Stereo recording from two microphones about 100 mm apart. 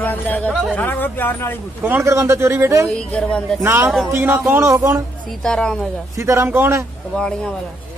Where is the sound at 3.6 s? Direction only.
25° right (ahead or behind).